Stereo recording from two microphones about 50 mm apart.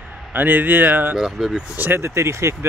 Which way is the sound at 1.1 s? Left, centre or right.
Centre.